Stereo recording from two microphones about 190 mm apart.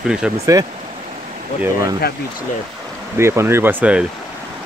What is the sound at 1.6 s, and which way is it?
Speech, 15° right (ahead or behind).